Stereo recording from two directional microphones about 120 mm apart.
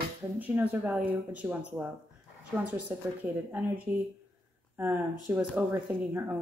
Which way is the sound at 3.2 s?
10° right (ahead or behind).